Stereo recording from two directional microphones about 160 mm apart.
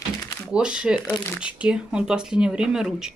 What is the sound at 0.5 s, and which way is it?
Speech, 5° right (ahead or behind).